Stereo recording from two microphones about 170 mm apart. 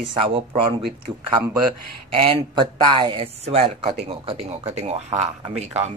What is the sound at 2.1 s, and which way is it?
Speech, 30° right (ahead or behind).